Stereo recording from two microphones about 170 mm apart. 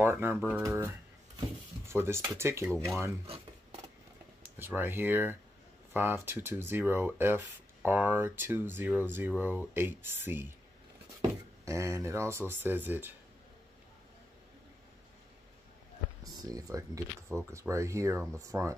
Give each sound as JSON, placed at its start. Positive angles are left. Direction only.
{"t": 0.0, "sound": "speech", "side_deg": -15}
{"t": 4.6, "sound": "speech", "side_deg": -10}
{"t": 16.4, "sound": "speech", "side_deg": -20}